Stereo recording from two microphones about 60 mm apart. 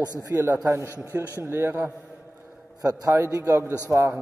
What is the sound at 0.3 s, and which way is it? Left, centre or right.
Speech, right.